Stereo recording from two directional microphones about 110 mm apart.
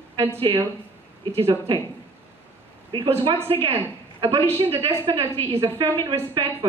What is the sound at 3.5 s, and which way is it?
A woman's voice, 60° right (ahead or behind).